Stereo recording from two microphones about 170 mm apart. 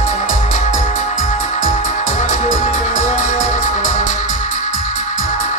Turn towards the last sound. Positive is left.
turn(degrees=50)  # may be behind; listen again after turning